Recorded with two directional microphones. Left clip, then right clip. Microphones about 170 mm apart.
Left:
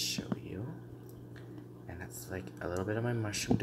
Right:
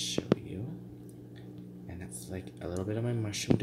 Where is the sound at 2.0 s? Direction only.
15° right (ahead or behind).